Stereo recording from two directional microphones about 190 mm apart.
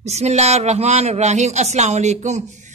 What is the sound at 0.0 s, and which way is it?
Speech, 35° right (ahead or behind).